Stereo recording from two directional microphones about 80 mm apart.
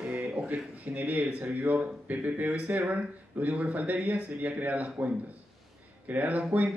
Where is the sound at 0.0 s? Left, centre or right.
Centre.